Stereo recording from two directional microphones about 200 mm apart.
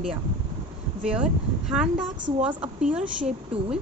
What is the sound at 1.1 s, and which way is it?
A woman's voice, 5° right (ahead or behind).